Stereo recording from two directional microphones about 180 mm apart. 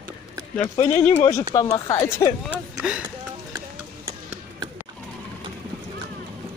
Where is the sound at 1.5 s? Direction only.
20° left (ahead or behind).